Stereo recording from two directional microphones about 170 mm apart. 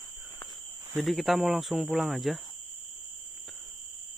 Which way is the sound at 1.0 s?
Centre (ahead or behind).